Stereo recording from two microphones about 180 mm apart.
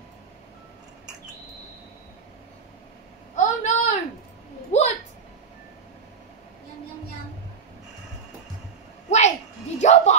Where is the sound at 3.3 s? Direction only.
40° left (ahead or behind).